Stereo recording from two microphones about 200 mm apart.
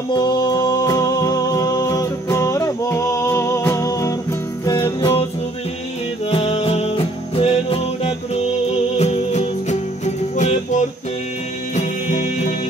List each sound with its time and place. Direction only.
0.1 s music: 20° left (ahead or behind)
6.3 s music: 30° left (ahead or behind)